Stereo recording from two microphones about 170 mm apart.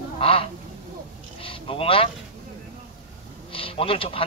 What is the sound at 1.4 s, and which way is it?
Vehicle, 30° left (ahead or behind).